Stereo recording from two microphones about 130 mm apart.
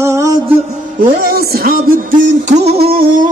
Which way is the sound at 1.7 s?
90° right.